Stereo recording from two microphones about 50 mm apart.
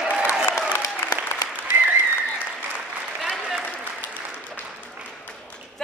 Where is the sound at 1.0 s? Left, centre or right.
Left.